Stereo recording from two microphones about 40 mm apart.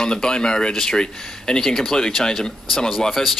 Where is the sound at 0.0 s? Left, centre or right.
Centre.